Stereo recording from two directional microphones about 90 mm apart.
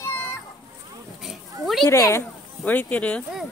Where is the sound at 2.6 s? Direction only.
20° left (ahead or behind).